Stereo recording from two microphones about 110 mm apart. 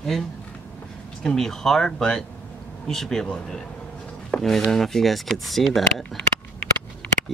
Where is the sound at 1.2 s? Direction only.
5° left (ahead or behind).